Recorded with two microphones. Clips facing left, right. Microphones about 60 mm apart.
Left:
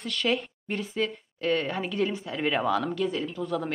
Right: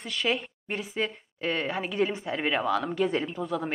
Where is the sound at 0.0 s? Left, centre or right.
Centre.